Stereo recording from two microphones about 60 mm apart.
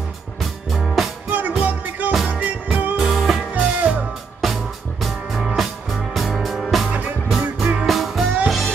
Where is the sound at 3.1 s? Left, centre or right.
Centre.